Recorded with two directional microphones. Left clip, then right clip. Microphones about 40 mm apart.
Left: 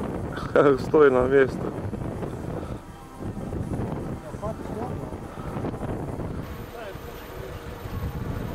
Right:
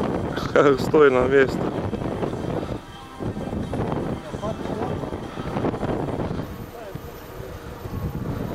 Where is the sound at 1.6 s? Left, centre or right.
Left.